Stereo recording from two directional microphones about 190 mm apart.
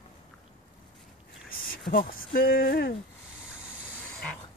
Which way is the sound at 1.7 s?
50° left (ahead or behind).